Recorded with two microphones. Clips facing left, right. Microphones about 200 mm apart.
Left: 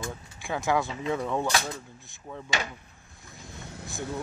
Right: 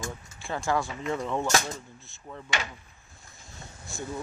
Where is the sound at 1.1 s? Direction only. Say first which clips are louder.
Left 1 dB; 10° left (ahead or behind).